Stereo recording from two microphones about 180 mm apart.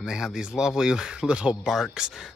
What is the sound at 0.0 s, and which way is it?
Speech, 5° right (ahead or behind).